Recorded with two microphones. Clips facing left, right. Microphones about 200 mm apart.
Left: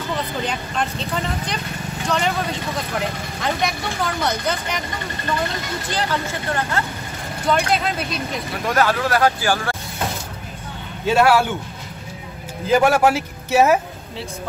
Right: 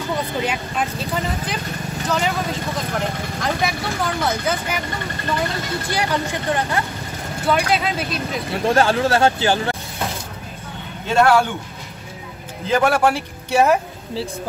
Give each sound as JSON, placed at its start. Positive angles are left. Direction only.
{"t": 0.1, "sound": "speech", "side_deg": -10}
{"t": 5.9, "sound": "speech", "side_deg": -15}
{"t": 7.4, "sound": "speech", "side_deg": -5}
{"t": 8.6, "sound": "speech", "side_deg": -30}
{"t": 11.1, "sound": "a man's voice", "side_deg": 5}
{"t": 12.6, "sound": "a man's voice", "side_deg": 10}